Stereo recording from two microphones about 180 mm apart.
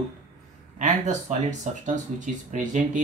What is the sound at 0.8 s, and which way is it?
Speech, 40° right (ahead or behind).